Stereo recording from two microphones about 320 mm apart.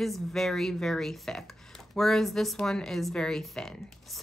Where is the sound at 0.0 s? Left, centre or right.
Centre.